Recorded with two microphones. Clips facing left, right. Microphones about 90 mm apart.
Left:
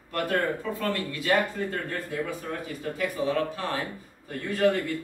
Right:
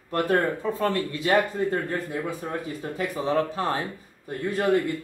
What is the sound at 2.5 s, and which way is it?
Speech, 30° right (ahead or behind).